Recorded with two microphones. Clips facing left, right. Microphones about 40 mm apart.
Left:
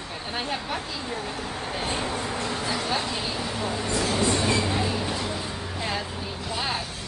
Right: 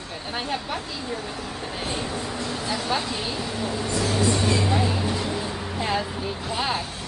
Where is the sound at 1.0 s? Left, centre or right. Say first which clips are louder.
Even; left.